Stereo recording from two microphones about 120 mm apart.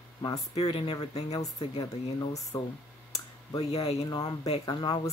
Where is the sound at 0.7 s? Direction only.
40° left (ahead or behind).